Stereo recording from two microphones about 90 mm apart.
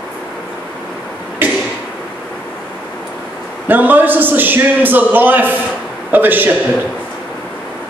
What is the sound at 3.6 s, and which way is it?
A man's voice, 20° right (ahead or behind).